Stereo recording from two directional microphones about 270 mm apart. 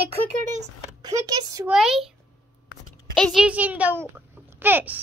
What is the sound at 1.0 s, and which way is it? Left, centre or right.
Speech, centre.